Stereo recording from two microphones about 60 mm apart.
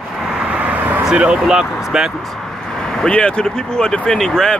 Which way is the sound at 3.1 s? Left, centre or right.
Centre.